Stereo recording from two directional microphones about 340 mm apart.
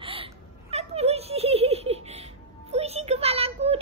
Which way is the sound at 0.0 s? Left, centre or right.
Centre.